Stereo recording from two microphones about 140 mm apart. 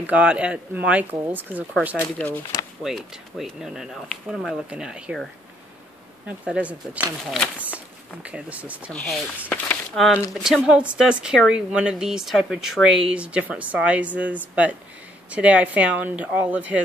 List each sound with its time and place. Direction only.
0.0 s speech: 10° right (ahead or behind)
2.2 s speech: 10° left (ahead or behind)
2.8 s speech: centre (ahead or behind)
8.9 s speech: 10° left (ahead or behind); by 16.8 s 10° right (ahead or behind)